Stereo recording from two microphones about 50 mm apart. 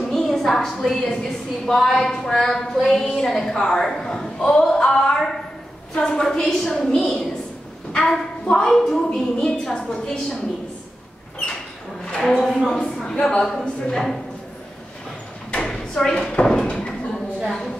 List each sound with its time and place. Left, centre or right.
0.0 s a sound: centre
0.8 s a woman's voice: centre
12.4 s speech: centre
12.7 s a woman's voice: centre
13.4 s a woman's voice: centre
15.7 s a sound: centre
17.4 s a woman's voice: centre